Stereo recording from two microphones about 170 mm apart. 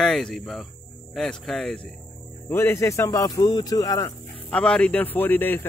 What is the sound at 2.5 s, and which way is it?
Speech, 15° left (ahead or behind).